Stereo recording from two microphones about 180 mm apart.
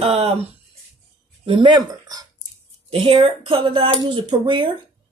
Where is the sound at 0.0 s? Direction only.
35° right (ahead or behind).